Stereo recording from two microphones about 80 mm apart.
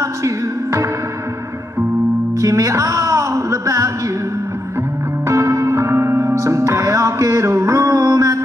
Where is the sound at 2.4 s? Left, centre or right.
Right.